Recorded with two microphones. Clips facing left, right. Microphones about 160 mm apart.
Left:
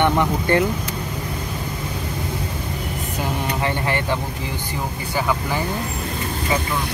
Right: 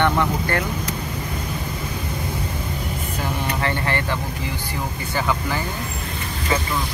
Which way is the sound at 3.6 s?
15° left (ahead or behind).